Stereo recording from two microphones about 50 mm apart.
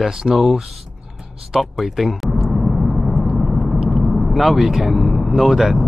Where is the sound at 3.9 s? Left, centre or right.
Centre.